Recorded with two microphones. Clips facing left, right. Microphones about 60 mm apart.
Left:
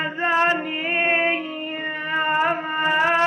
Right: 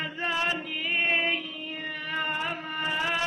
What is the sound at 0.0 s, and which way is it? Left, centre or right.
Music, left.